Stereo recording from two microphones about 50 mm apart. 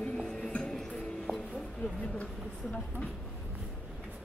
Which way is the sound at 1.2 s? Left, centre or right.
Centre.